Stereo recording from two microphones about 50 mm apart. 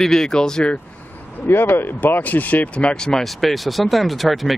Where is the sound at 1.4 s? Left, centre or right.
Left.